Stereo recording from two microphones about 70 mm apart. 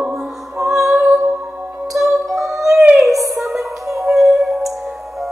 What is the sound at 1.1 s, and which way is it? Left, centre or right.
Music, right.